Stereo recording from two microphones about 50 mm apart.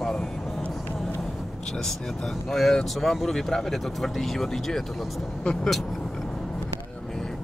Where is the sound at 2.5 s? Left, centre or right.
Centre.